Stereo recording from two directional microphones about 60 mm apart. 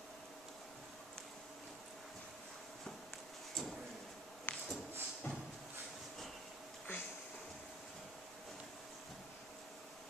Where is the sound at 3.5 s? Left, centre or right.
Centre.